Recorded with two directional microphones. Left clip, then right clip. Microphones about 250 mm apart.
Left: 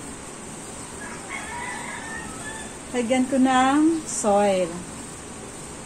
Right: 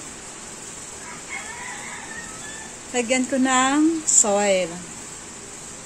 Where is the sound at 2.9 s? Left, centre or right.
Right.